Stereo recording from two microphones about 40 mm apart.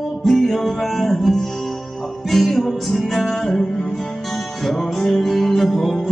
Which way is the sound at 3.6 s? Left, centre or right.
Centre.